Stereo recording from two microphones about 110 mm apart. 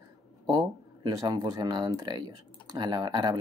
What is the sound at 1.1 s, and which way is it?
Speech, 35° right (ahead or behind).